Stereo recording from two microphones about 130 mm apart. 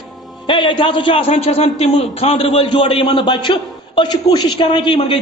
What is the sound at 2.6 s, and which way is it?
A man's voice, 40° left (ahead or behind).